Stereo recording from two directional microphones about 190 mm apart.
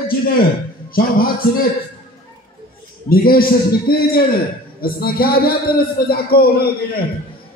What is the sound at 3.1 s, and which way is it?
A man's voice, 50° left (ahead or behind).